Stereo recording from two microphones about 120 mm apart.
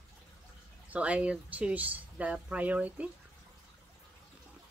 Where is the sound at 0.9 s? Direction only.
10° right (ahead or behind).